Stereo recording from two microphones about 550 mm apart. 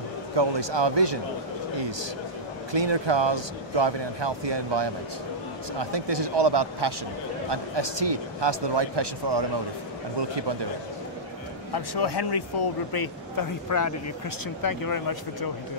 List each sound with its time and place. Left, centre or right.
0.4 s speech: right
11.7 s speech: left